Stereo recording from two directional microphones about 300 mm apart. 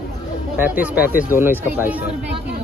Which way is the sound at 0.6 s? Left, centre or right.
Centre.